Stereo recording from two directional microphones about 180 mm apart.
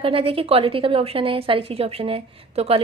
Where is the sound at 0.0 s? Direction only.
30° right (ahead or behind).